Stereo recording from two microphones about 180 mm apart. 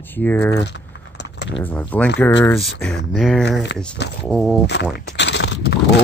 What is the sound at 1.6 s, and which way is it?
Speech, 10° left (ahead or behind).